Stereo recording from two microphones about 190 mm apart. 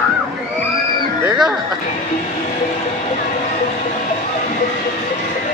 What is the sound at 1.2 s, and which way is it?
Music, 20° right (ahead or behind).